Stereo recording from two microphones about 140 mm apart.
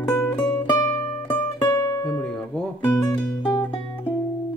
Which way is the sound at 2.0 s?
10° left (ahead or behind).